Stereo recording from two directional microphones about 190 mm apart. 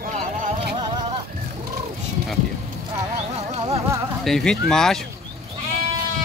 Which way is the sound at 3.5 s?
35° right (ahead or behind).